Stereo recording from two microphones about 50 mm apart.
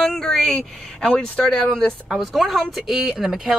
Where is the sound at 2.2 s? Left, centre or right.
Centre.